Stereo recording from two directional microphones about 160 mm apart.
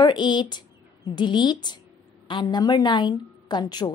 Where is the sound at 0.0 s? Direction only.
25° left (ahead or behind).